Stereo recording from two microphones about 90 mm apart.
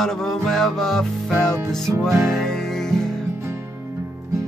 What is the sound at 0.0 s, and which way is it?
Music, 5° left (ahead or behind).